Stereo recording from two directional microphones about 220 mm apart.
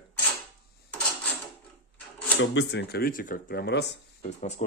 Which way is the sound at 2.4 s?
55° left (ahead or behind).